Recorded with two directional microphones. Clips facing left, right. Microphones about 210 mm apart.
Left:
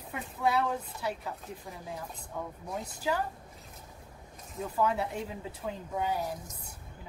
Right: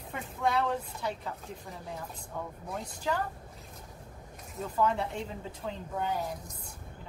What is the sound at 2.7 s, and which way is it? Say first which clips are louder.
Speech: left 1 dB; 5° left (ahead or behind).